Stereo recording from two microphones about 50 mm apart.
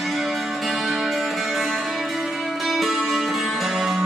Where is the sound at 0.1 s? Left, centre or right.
Centre.